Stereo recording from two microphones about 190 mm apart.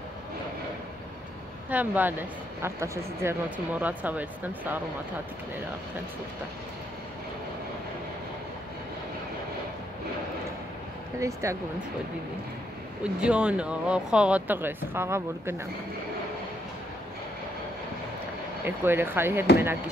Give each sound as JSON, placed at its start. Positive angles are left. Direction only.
{"t": 1.7, "sound": "a woman's voice", "side_deg": -10}
{"t": 11.1, "sound": "a woman's voice", "side_deg": -15}
{"t": 13.0, "sound": "a woman's voice", "side_deg": -5}
{"t": 18.6, "sound": "a woman's voice", "side_deg": -10}